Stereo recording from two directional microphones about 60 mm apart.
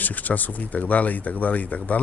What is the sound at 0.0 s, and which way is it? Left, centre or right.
Speech, left.